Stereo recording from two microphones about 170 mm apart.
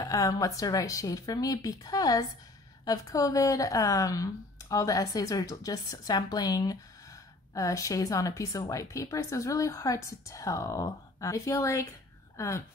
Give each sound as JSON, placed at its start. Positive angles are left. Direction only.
{"t": 0.0, "sound": "a woman's voice", "side_deg": 20}